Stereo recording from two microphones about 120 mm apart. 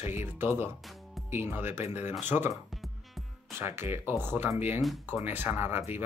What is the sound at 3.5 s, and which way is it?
Speech, 20° right (ahead or behind).